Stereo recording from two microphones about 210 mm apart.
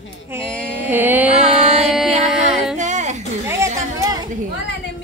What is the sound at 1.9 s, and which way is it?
Speech, centre (ahead or behind).